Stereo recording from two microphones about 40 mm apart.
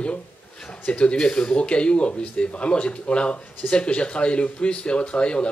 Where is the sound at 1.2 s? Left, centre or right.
Centre.